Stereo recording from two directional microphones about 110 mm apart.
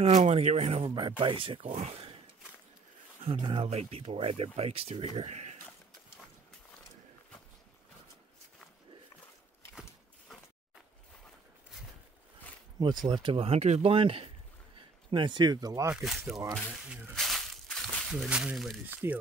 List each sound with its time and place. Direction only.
0.1 s speech: 90° right
0.8 s speech: 50° right (ahead or behind)
3.3 s speech: 50° right (ahead or behind)
3.6 s speech: 70° right (ahead or behind); by 5.6 s 85° right
12.7 s speech: 40° right (ahead or behind)
16.0 s speech: centre (ahead or behind)
17.1 s a sound: 5° left (ahead or behind)
18.1 s speech: 5° right (ahead or behind)
19.0 s speech: 25° right (ahead or behind)